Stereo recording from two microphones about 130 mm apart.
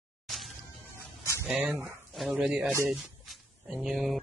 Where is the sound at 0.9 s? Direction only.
20° left (ahead or behind).